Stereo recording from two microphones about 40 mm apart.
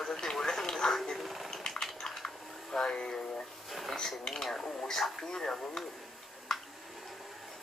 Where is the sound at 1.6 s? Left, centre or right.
Centre.